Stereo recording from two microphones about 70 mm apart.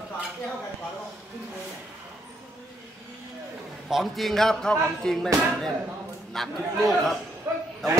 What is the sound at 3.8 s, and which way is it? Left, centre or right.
A man's voice, centre.